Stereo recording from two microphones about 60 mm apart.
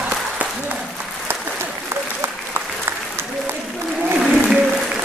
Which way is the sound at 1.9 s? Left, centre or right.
Right.